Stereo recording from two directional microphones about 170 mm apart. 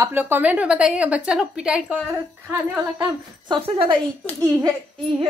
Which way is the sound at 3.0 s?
30° right (ahead or behind).